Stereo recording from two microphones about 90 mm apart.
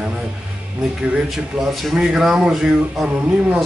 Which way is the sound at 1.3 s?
Centre (ahead or behind).